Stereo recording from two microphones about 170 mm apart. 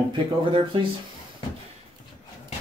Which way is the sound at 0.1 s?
30° right (ahead or behind).